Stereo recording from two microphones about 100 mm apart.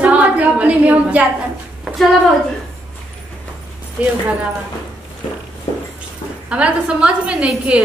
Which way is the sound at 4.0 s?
10° right (ahead or behind).